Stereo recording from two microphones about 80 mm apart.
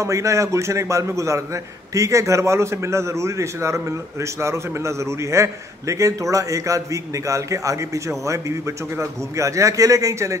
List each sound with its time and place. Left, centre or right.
0.0 s a man's voice: right